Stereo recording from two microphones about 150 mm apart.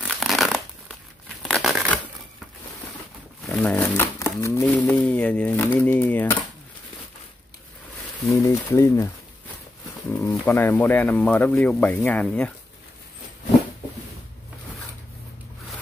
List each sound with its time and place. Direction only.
0.0 s a sound: centre (ahead or behind)
1.4 s crumpling: centre (ahead or behind)
3.6 s speech: 15° left (ahead or behind)
4.6 s speech: 5° left (ahead or behind)
8.3 s speech: 20° left (ahead or behind)
10.1 s speech: 15° left (ahead or behind)